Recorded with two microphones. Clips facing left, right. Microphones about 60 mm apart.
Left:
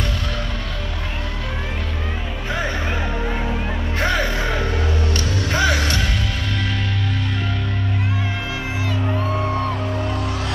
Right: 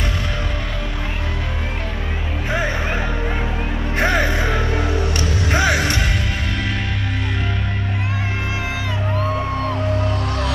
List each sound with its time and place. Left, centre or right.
3.9 s music: right
5.5 s music: centre